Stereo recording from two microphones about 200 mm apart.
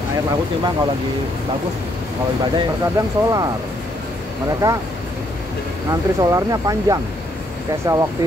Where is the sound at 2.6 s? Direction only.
20° right (ahead or behind).